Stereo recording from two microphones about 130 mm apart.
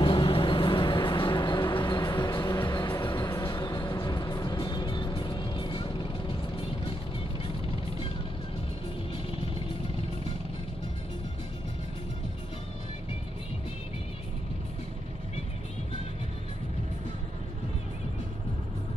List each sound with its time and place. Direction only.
0.0 s music: 40° left (ahead or behind)